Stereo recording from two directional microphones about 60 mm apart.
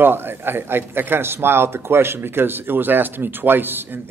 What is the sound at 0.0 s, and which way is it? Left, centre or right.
A man's voice, right.